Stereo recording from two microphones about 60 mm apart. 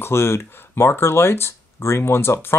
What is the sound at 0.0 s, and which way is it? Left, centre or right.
Speech, left.